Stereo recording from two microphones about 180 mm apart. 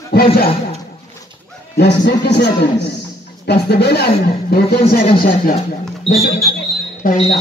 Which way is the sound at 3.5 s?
65° left (ahead or behind).